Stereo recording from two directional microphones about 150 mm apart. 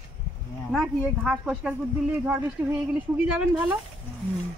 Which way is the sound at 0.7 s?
Centre (ahead or behind).